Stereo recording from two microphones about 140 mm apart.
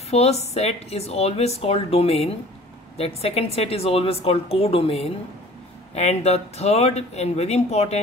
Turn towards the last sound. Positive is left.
turn(degrees=50)  # may be behind; listen again after turning